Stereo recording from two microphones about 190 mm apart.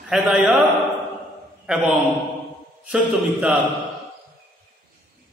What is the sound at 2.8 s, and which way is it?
Speech, 5° right (ahead or behind).